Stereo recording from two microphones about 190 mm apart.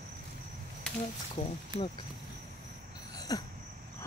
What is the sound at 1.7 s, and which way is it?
Speech, 35° left (ahead or behind).